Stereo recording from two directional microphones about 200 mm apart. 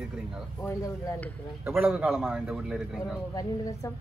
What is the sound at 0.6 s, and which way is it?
Speech, 15° left (ahead or behind).